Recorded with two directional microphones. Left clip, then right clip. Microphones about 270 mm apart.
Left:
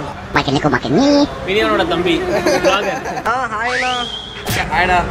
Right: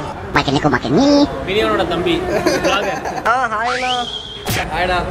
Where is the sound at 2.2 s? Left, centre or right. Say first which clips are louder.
Left 3 dB; centre.